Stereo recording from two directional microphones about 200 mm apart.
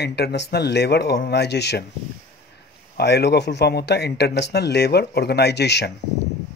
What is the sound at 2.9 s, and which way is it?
Speech, 55° left (ahead or behind).